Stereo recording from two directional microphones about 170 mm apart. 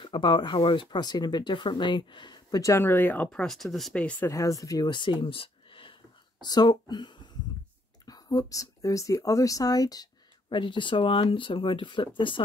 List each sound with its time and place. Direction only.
0.0 s speech: 30° left (ahead or behind)
5.2 s a sound: 30° left (ahead or behind)
6.4 s speech: 25° left (ahead or behind)